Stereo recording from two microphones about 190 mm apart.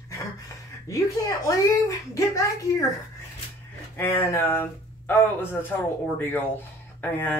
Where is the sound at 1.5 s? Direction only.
15° left (ahead or behind).